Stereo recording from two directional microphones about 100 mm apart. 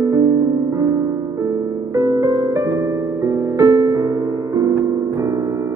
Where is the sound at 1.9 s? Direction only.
35° right (ahead or behind).